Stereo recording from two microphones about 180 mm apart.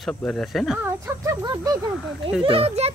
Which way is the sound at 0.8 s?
20° right (ahead or behind).